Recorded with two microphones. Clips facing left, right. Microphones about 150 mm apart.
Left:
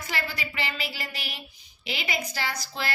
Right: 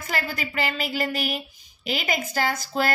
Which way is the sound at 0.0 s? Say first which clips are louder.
Right 4 dB; 50° right (ahead or behind).